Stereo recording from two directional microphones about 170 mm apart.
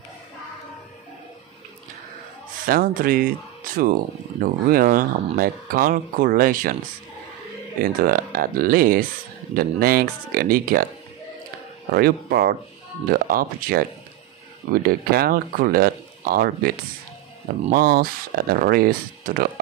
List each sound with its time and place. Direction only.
2.6 s speech: 55° right (ahead or behind)
7.8 s speech: 60° right (ahead or behind)
11.9 s speech: 65° right (ahead or behind)
17.7 s speech: 65° right (ahead or behind)